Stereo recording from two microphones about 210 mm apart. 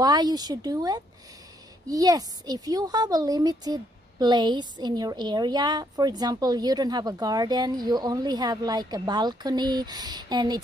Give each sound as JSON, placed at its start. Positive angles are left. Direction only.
{"t": 0.0, "sound": "a woman's voice", "side_deg": -20}